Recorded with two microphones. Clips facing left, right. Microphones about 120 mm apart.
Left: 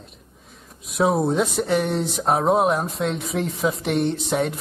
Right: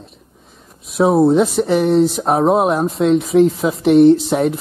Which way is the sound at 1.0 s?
25° right (ahead or behind).